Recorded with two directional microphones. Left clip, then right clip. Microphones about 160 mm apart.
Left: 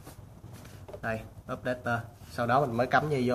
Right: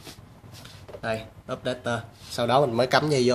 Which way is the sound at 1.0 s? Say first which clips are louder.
Right 5 dB; 55° right (ahead or behind).